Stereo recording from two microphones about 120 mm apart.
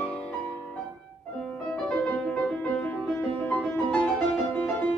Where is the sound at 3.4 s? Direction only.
10° left (ahead or behind).